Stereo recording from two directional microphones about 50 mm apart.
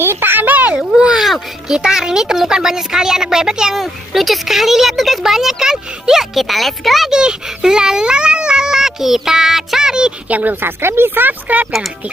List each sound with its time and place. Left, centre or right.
0.0 s a sound: right
0.7 s a child's voice: centre
3.7 s speech: centre
7.1 s speech: centre
10.2 s a woman's voice: right
10.5 s speech: right